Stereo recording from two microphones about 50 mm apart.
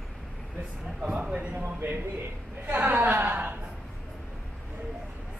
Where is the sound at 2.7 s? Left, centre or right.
Right.